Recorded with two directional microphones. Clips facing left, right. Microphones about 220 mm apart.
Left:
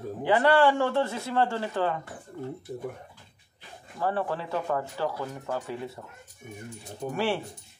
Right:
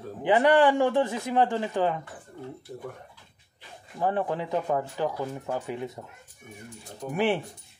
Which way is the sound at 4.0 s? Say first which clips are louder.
Right 2 dB; 15° right (ahead or behind).